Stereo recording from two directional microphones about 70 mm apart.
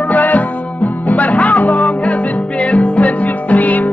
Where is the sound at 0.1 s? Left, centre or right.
Left.